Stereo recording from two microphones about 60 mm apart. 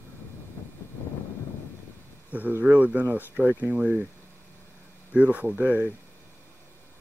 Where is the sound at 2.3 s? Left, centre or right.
Right.